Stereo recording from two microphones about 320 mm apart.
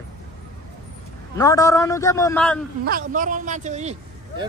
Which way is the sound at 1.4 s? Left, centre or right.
Centre.